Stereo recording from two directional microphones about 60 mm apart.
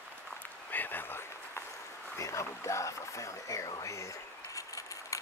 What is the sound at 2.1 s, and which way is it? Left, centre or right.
Speech, left.